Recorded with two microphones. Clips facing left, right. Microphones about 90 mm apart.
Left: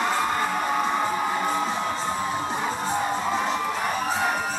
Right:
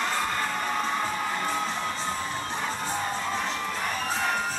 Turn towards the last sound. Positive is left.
turn(degrees=15)  # may be behind; listen again after turning